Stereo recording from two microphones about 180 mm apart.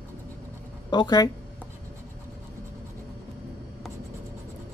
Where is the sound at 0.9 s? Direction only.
20° left (ahead or behind).